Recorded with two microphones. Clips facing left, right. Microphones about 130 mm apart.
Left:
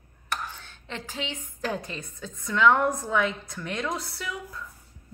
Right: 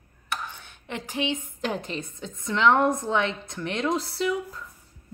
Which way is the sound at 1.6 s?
20° right (ahead or behind).